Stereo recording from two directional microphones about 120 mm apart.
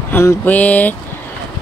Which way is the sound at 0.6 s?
15° left (ahead or behind).